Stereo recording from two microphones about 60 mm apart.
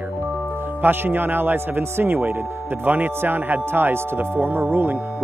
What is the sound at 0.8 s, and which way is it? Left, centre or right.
Livestock, right.